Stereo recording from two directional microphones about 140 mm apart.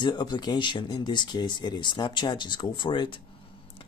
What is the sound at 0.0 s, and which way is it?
Speech, 30° left (ahead or behind).